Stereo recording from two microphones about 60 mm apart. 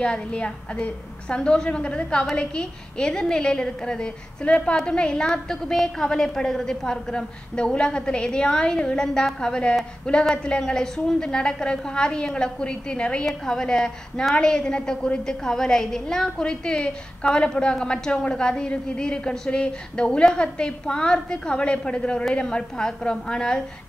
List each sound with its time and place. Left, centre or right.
0.0 s a woman's voice: centre